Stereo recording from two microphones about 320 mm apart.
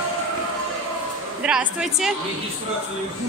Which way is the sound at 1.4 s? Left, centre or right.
Centre.